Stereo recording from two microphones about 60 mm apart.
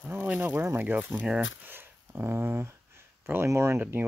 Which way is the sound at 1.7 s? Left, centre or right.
Right.